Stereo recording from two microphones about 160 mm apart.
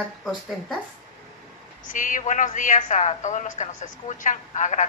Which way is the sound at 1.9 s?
55° left (ahead or behind).